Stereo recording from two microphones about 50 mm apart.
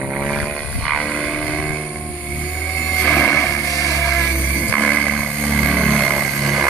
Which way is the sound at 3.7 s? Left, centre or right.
Left.